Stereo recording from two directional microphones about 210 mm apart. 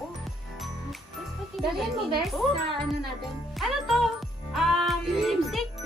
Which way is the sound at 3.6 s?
Centre (ahead or behind).